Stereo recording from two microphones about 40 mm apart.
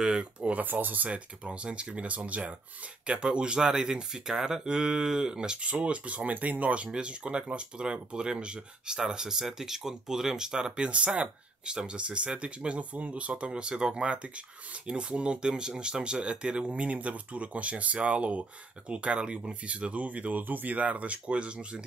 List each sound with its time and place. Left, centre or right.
0.0 s speech: right
0.4 s speech: right
3.1 s speech: right
5.7 s speech: right
13.3 s speech: right